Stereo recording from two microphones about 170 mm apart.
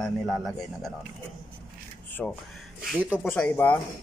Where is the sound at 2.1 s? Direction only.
10° left (ahead or behind).